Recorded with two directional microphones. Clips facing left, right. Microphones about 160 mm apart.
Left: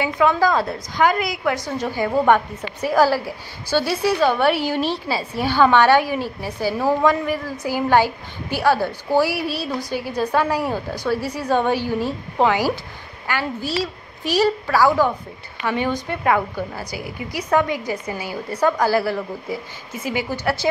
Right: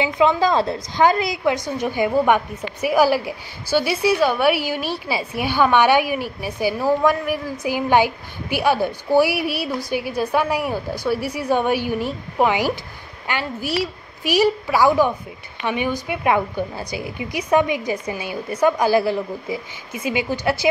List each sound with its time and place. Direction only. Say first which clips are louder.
0.0 s a woman's voice: right 1 dB; 20° right (ahead or behind)